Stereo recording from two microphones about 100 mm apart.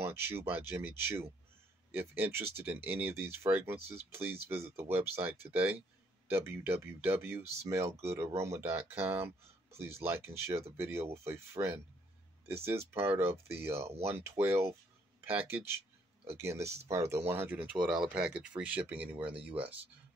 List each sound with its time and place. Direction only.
0.0 s speech: 20° right (ahead or behind)